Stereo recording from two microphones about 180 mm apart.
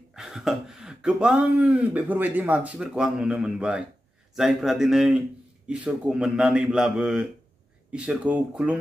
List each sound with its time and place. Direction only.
0.1 s speech: centre (ahead or behind)